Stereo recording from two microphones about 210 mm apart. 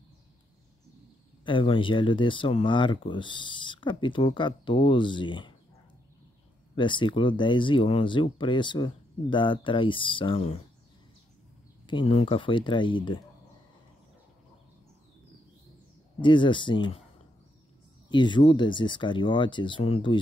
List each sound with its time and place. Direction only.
1.4 s speech: 25° left (ahead or behind)
6.7 s speech: 20° left (ahead or behind)
11.8 s speech: 25° left (ahead or behind)
16.2 s speech: 25° left (ahead or behind)
18.1 s speech: 20° left (ahead or behind)